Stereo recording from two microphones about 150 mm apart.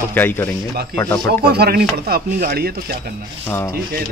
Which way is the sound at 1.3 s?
90° right.